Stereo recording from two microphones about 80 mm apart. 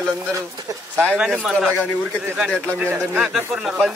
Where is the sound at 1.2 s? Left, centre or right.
Centre.